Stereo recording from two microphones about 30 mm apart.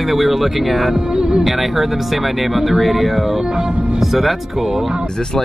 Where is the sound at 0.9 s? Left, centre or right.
Centre.